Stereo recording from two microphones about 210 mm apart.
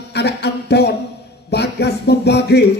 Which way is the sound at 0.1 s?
55° left (ahead or behind).